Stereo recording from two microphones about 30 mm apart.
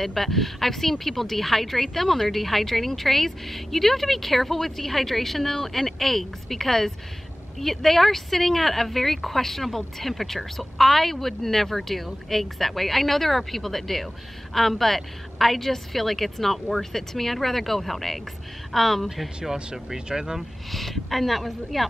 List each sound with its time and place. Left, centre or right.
0.0 s speech: centre
19.1 s speech: centre
20.1 s speech: right
20.7 s a woman's voice: centre